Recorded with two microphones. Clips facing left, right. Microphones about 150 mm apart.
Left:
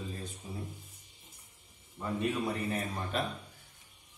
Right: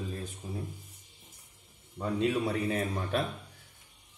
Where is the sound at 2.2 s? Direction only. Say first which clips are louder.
Right 4 dB; 80° right.